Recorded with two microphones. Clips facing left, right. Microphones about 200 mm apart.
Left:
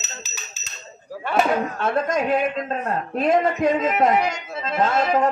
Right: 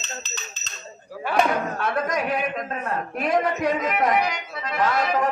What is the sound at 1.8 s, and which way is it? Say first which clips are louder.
Speech: left 3 dB; 25° left (ahead or behind).